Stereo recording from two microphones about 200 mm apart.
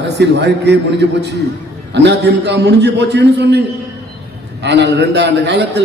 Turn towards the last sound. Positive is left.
turn(degrees=-60)  # may be behind; listen again after turning